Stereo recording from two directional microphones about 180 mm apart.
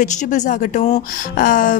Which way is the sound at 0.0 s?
45° left (ahead or behind).